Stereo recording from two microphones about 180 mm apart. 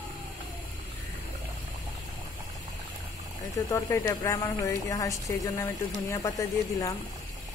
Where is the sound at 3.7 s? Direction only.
15° left (ahead or behind).